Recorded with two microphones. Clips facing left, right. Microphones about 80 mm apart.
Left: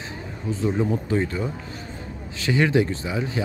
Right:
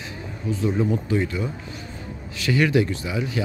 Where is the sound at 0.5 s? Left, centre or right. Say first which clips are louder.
Right 1 dB; left.